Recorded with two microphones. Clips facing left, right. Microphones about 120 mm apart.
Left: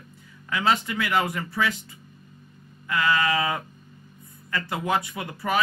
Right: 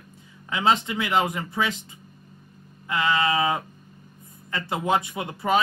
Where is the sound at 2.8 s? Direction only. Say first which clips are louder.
Even; 20° right (ahead or behind).